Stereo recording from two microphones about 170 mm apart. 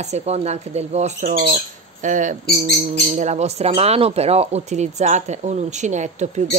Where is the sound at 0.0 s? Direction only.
40° right (ahead or behind).